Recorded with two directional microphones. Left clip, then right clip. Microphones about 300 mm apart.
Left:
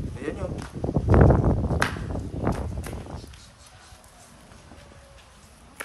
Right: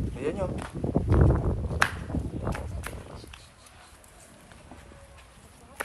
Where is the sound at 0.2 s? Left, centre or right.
Centre.